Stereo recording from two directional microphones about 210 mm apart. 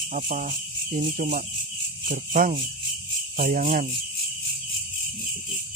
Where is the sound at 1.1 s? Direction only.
40° right (ahead or behind).